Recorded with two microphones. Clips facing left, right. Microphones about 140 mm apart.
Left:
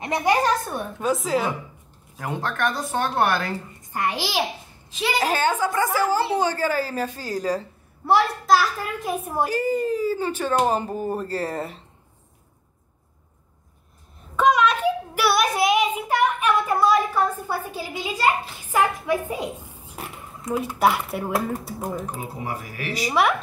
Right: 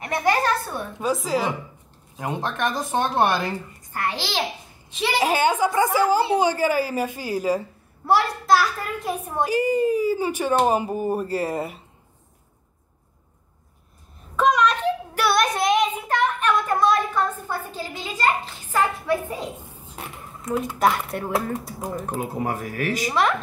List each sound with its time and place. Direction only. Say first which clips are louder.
0.0 s a woman's voice: left 1 dB; 15° left (ahead or behind)
0.9 s a child's voice: even; centre (ahead or behind)
2.1 s speech: right 1 dB; 20° right (ahead or behind)
3.9 s a woman's voice: left 2 dB; 15° left (ahead or behind)
4.9 s a child's voice: right 1 dB; centre (ahead or behind)
5.3 s speech: right 2 dB; 15° right (ahead or behind)
8.0 s a child's voice: left 1 dB; centre (ahead or behind)
9.5 s speech: right 5 dB; 10° right (ahead or behind)
14.3 s child singing: left 1 dB; centre (ahead or behind)
20.0 s speech: left 1 dB; centre (ahead or behind)
22.1 s speech: right 5 dB; 50° right (ahead or behind)